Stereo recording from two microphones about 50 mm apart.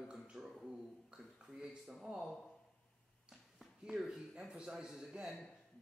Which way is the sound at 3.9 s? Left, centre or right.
Centre.